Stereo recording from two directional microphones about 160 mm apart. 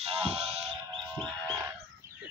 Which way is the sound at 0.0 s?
40° right (ahead or behind).